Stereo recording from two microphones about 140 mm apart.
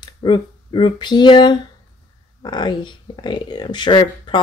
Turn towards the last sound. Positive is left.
turn(degrees=35)  # may be behind; listen again after turning